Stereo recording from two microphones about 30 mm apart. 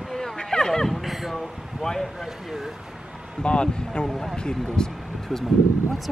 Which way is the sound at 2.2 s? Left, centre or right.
Centre.